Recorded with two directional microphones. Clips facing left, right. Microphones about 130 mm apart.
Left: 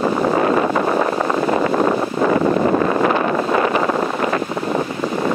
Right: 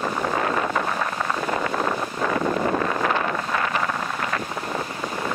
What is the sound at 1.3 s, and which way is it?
Wind noise, 45° left (ahead or behind).